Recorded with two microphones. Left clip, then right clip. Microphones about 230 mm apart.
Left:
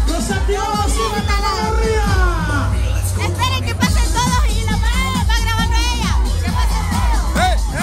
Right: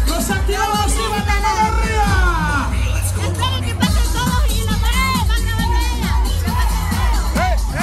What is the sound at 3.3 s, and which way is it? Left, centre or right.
Music, left.